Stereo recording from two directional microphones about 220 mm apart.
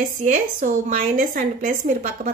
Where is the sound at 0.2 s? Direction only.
35° right (ahead or behind).